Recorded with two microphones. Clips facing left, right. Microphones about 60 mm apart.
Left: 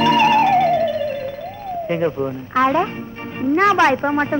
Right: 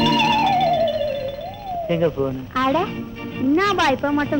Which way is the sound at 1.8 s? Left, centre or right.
Left.